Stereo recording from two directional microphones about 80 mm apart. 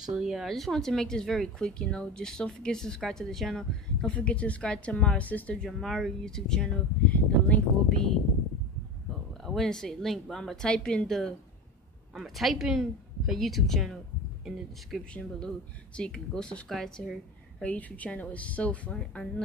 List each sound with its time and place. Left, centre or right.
0.1 s speech: centre
5.7 s speech: centre
9.4 s a woman's voice: centre
12.2 s a woman's voice: centre
15.0 s speech: centre
17.6 s speech: centre